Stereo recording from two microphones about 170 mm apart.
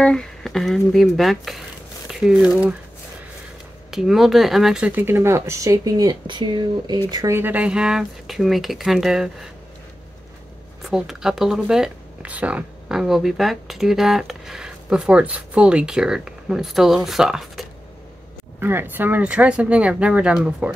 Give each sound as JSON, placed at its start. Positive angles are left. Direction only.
{"t": 0.0, "sound": "speech", "side_deg": 5}
{"t": 3.9, "sound": "speech", "side_deg": 0}
{"t": 10.8, "sound": "speech", "side_deg": -5}
{"t": 18.6, "sound": "speech", "side_deg": -10}